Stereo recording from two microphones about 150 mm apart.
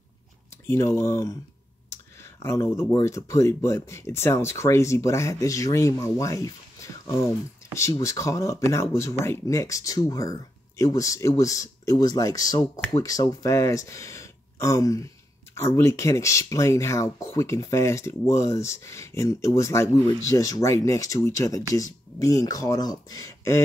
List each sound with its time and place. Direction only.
0.7 s speech: 15° left (ahead or behind)
2.4 s speech: 15° left (ahead or behind)